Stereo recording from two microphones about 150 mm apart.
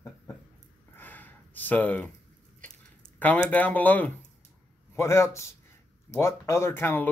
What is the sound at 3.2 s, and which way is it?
Speech, 10° left (ahead or behind).